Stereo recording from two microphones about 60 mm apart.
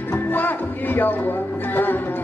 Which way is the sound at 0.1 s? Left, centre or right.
Left.